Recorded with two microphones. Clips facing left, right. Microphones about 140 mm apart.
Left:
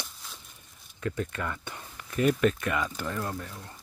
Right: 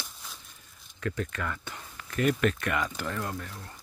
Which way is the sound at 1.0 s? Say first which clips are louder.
Left 1 dB; 25° left (ahead or behind).